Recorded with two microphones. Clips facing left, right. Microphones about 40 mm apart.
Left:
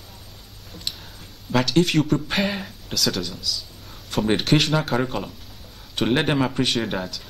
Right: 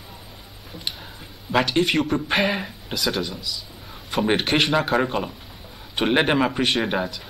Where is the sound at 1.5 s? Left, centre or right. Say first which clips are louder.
Even; centre.